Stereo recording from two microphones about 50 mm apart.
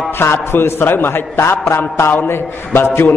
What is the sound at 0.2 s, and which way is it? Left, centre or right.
A man's voice, left.